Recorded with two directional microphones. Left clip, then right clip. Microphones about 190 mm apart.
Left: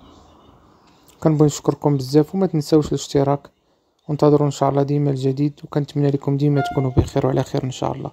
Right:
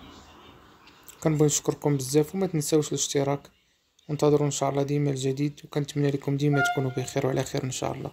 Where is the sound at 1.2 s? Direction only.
40° left (ahead or behind).